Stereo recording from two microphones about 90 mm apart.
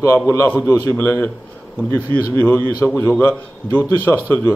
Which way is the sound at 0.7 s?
35° left (ahead or behind).